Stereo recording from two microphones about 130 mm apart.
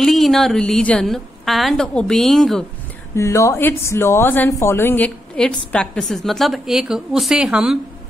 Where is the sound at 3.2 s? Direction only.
20° left (ahead or behind).